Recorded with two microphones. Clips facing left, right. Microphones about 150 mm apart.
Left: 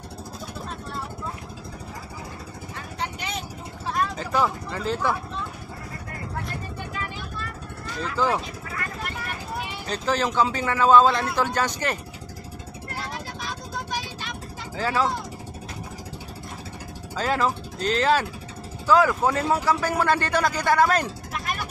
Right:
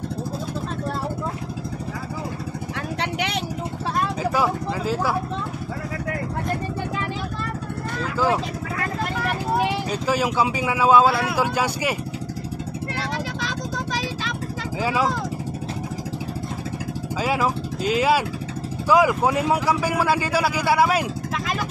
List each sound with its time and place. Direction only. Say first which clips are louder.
3.0 s vehicle: right 4 dB; 70° right (ahead or behind)
4.2 s speech: right 3 dB; 10° right (ahead or behind)
9.2 s vehicle: right 10 dB; 90° right
9.8 s speech: right 2 dB; 10° right (ahead or behind)
12.9 s vehicle: right 4 dB; 90° right
14.8 s speech: right 1 dB; 10° right (ahead or behind)
17.2 s speech: right 1 dB; 10° right (ahead or behind)
21.3 s vehicle: right 4 dB; 90° right